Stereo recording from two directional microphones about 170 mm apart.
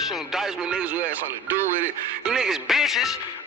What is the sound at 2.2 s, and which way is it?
Music, 5° right (ahead or behind).